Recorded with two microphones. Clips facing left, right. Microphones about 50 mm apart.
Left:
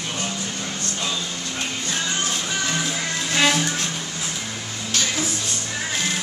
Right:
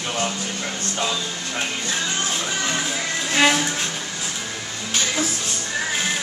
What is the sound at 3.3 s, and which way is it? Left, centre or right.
Music, centre.